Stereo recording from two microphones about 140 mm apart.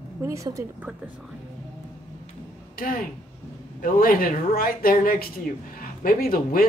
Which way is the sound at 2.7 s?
90° left.